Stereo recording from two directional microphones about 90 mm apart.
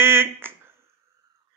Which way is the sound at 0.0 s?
25° right (ahead or behind).